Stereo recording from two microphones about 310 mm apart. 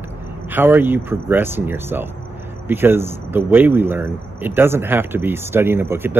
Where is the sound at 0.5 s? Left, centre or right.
Centre.